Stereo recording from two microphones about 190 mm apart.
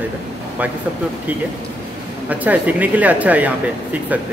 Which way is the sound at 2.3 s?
10° right (ahead or behind).